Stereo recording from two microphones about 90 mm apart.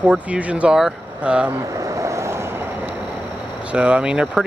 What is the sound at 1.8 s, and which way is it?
Vehicle, 35° right (ahead or behind).